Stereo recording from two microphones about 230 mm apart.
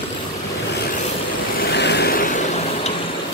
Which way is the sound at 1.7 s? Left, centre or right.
Left.